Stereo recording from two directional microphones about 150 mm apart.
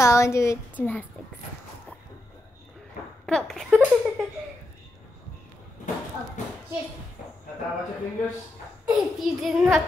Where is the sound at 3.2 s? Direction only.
5° left (ahead or behind).